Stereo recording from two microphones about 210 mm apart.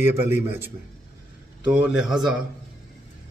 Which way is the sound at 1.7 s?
5° right (ahead or behind).